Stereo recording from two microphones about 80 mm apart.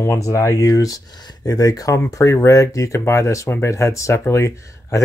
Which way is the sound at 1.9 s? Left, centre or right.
Left.